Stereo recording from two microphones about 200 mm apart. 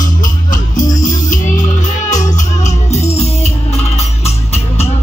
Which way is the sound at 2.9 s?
30° left (ahead or behind).